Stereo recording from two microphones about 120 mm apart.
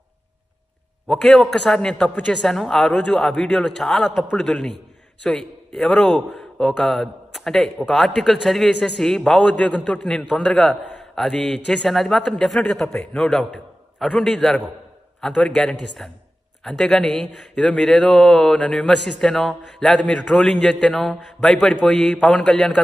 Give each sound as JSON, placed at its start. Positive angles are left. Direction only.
{"t": 1.0, "sound": "a man's voice", "side_deg": 5}